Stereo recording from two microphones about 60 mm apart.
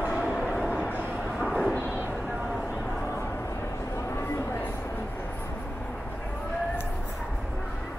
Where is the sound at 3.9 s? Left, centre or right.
Left.